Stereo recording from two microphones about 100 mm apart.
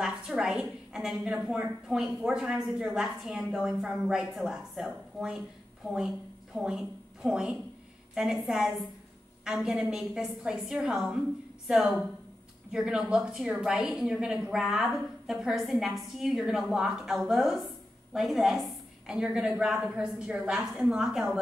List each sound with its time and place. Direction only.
0.0 s a woman's voice: 5° right (ahead or behind)